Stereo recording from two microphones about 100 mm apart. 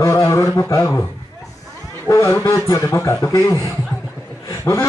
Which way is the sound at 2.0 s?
30° left (ahead or behind).